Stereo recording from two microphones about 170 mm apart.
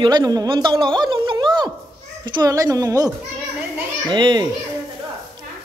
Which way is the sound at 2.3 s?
20° right (ahead or behind).